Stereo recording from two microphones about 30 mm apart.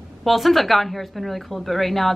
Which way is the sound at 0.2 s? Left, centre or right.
Centre.